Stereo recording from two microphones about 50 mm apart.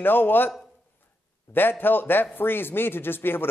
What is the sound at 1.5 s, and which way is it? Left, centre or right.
A man's voice, left.